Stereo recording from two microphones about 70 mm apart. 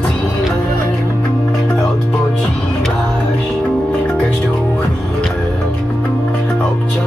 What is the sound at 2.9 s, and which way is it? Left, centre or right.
Music, left.